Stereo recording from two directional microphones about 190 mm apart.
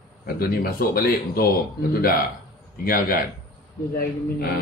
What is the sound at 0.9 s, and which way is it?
Speech, 50° left (ahead or behind).